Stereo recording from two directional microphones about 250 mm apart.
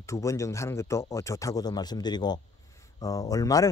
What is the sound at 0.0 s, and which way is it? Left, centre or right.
Speech, centre.